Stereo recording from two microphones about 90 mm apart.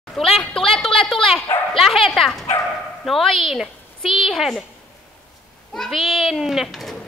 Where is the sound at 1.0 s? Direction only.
5° left (ahead or behind).